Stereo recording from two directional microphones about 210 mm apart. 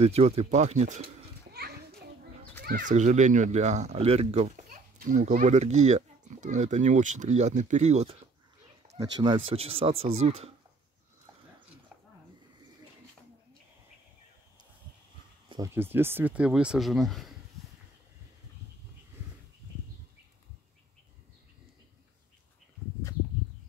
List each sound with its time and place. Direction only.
0.0 s a child's voice: 30° right (ahead or behind)
4.9 s speech: 40° right (ahead or behind)
8.9 s speech: 20° right (ahead or behind)
15.4 s music: 20° right (ahead or behind)
15.7 s speech: 10° right (ahead or behind)